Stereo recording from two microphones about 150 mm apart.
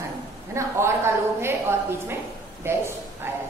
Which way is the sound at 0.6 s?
20° right (ahead or behind).